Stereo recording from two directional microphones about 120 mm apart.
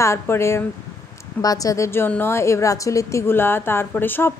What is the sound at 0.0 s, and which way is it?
Speech, 20° left (ahead or behind).